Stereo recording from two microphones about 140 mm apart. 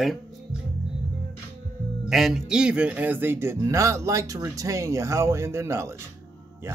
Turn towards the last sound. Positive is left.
turn(degrees=-20)  # may be behind; listen again after turning